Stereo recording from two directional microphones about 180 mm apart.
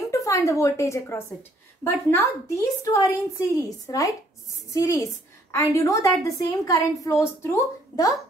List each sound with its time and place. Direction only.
0.1 s a woman's voice: 15° left (ahead or behind)